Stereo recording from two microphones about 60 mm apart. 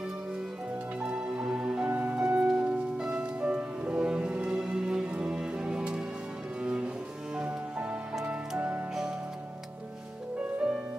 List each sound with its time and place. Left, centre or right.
1.0 s music: centre
6.6 s cello: centre
8.3 s music: right